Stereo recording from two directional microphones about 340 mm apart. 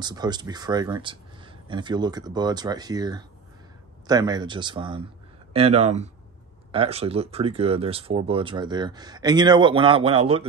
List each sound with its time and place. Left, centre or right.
0.0 s speech: centre